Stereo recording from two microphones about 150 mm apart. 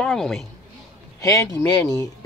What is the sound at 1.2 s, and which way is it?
Speech, 20° left (ahead or behind).